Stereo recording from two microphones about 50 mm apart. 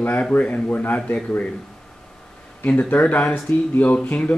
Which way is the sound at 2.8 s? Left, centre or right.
Left.